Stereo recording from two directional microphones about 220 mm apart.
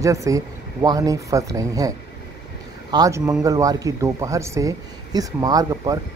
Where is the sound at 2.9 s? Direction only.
15° right (ahead or behind).